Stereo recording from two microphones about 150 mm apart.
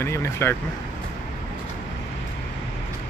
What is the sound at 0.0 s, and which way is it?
Speech, 15° left (ahead or behind).